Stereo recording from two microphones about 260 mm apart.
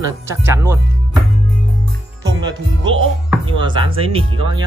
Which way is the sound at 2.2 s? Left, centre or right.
Centre.